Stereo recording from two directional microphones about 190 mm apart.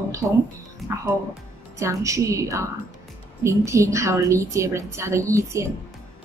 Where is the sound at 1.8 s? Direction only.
15° right (ahead or behind).